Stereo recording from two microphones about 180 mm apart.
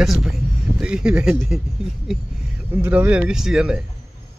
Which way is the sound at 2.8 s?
10° right (ahead or behind).